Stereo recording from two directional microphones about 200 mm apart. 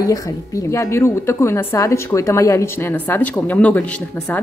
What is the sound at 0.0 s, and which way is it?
A woman's voice, 15° left (ahead or behind).